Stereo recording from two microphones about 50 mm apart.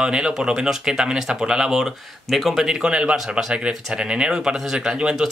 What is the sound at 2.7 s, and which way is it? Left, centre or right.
Speech, centre.